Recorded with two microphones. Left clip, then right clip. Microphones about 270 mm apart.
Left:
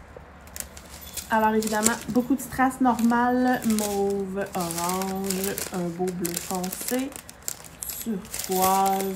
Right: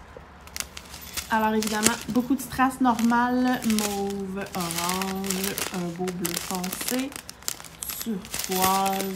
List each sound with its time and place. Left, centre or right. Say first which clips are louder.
1.1 s speech: left 2 dB; centre